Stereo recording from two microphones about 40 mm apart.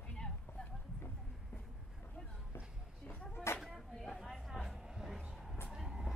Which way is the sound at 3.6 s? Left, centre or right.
Centre.